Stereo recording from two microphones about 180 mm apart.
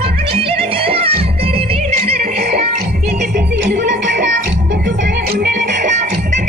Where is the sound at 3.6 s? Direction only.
70° right (ahead or behind).